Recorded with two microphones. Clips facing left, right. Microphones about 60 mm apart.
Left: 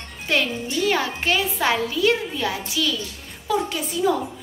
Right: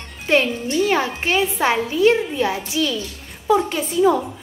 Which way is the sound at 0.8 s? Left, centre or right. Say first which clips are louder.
Right 2 dB; right.